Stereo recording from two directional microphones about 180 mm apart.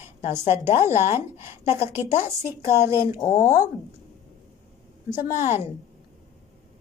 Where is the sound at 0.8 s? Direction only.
15° right (ahead or behind).